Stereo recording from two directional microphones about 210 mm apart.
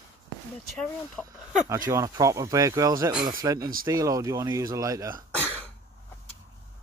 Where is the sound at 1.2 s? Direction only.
Centre (ahead or behind).